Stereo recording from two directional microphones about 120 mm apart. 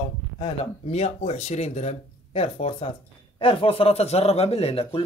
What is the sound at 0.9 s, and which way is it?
A man's voice, 65° left (ahead or behind).